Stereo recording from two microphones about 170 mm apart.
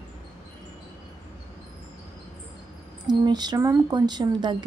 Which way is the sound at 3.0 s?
25° right (ahead or behind).